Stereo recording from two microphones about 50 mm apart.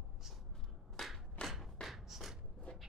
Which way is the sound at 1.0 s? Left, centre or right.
Centre.